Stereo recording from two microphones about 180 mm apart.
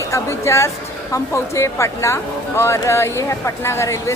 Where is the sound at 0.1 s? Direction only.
15° left (ahead or behind).